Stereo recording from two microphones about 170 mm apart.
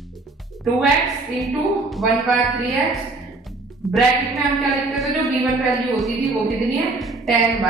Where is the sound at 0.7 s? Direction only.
Centre (ahead or behind).